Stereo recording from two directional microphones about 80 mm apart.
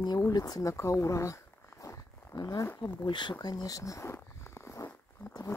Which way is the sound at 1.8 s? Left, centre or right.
Left.